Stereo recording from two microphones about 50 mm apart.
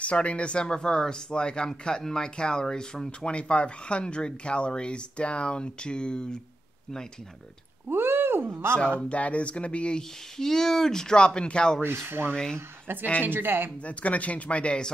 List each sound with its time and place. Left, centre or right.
0.0 s speech: left
7.9 s speech: right
9.1 s speech: left
10.3 s speech: centre
11.8 s speech: right
12.3 s speech: centre
12.5 s speech: right
13.8 s speech: left